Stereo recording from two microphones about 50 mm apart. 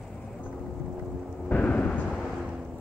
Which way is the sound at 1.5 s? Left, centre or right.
Left.